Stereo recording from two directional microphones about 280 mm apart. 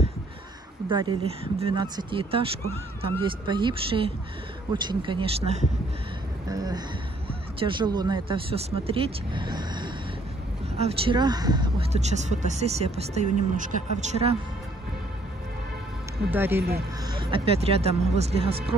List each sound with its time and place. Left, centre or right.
0.8 s speech: centre
16.3 s speech: centre